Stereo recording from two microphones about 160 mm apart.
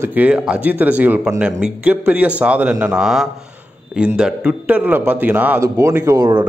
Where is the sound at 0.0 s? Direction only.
10° right (ahead or behind).